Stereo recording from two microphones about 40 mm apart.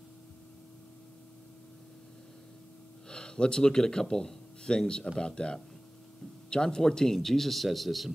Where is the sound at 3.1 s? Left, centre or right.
Left.